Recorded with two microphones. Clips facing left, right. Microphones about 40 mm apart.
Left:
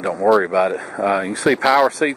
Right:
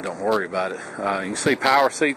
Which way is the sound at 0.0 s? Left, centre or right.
Centre.